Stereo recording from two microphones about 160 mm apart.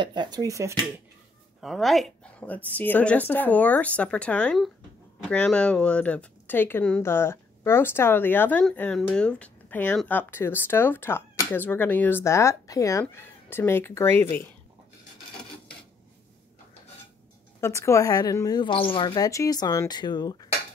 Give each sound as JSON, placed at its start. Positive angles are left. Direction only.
{"t": 0.0, "sound": "speech", "side_deg": -30}
{"t": 1.6, "sound": "speech", "side_deg": 0}
{"t": 17.6, "sound": "speech", "side_deg": 15}